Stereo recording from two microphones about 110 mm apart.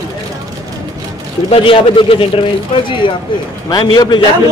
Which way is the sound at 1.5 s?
55° left (ahead or behind).